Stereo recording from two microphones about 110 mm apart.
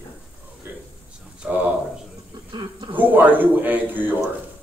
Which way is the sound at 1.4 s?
15° right (ahead or behind).